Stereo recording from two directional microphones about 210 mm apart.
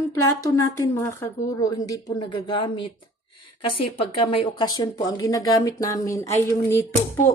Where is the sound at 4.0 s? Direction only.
25° left (ahead or behind).